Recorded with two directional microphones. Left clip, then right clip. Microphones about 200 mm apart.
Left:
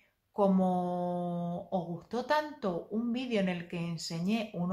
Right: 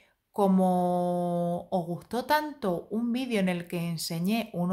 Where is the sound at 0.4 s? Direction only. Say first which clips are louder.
Right 4 dB; 40° right (ahead or behind).